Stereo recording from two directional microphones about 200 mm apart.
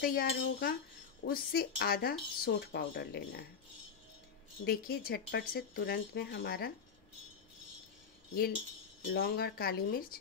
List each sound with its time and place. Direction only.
0.0 s speech: 45° left (ahead or behind)
4.6 s speech: 50° left (ahead or behind)
9.1 s speech: 50° left (ahead or behind)